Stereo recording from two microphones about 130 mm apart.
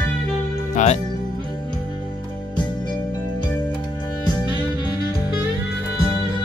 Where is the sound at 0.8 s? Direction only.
70° left (ahead or behind).